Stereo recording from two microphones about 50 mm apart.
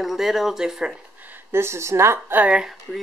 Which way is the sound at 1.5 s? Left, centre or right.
Right.